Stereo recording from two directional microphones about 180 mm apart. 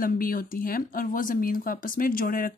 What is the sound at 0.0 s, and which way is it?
Speech, 50° left (ahead or behind).